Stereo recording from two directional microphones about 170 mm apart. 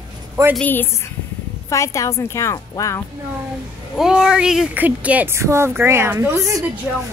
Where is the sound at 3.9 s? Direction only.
5° right (ahead or behind).